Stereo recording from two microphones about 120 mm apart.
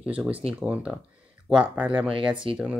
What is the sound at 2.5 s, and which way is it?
Speech, 50° right (ahead or behind).